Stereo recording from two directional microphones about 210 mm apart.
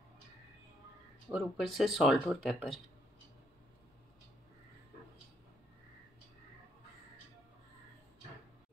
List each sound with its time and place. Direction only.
1.3 s speech: centre (ahead or behind)